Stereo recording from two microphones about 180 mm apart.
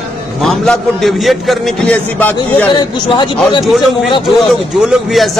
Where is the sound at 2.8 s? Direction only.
25° left (ahead or behind).